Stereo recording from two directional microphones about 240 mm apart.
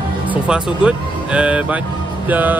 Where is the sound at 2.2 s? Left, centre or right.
Centre.